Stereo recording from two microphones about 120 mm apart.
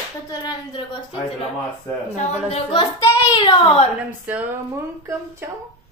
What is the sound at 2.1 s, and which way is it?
Speech, 70° left (ahead or behind).